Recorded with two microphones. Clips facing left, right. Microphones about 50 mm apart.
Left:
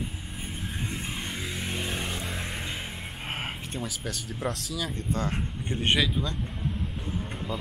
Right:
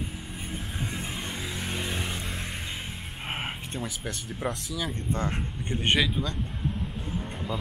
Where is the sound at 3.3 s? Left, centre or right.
Centre.